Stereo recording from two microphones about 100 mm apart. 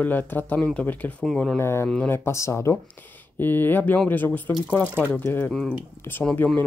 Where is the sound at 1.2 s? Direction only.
5° left (ahead or behind).